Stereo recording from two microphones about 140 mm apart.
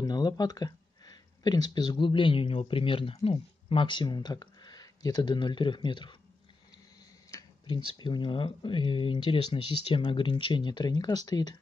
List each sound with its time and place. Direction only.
0.0 s speech: 30° left (ahead or behind)
7.2 s a sound: 25° left (ahead or behind)
8.0 s speech: 35° left (ahead or behind)